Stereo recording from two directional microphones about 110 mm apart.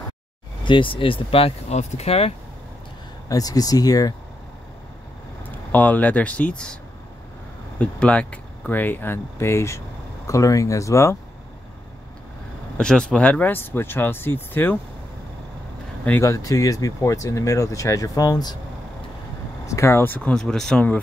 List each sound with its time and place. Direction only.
0.7 s speech: 50° left (ahead or behind); by 2.3 s 65° left (ahead or behind)
3.3 s speech: 35° left (ahead or behind)
5.4 s speech: 15° left (ahead or behind)
7.8 s speech: 10° left (ahead or behind); by 11.1 s 25° left (ahead or behind)
12.7 s speech: 5° left (ahead or behind)
16.2 s speech: 30° left (ahead or behind)
19.6 s speech: 25° left (ahead or behind); by 20.8 s 5° left (ahead or behind)